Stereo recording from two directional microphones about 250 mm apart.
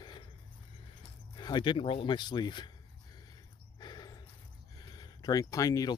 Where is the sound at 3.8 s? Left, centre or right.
Centre.